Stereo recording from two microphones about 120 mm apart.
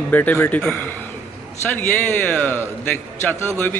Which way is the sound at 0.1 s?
15° left (ahead or behind).